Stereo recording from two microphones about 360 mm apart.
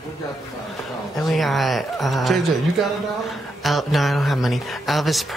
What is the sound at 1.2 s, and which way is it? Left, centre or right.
Speech, centre.